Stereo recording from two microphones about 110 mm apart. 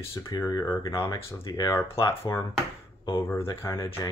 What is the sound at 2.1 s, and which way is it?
Speech, 25° left (ahead or behind).